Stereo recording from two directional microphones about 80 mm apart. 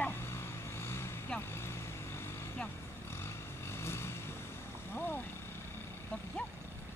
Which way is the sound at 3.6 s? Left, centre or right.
Left.